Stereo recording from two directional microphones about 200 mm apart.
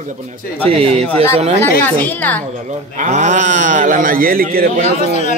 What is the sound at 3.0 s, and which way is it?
A man's voice, 35° right (ahead or behind).